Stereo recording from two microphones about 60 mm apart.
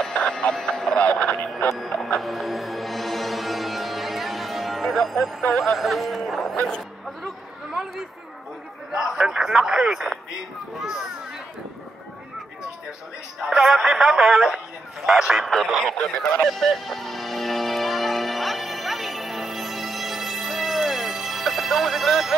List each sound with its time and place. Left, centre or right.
0.0 s music: centre
1.8 s speech: centre
2.1 s music: centre
5.6 s a man's voice: centre
6.5 s speech: left
8.9 s a man's voice: centre
13.4 s a man's voice: centre
15.8 s speech: centre
16.4 s music: centre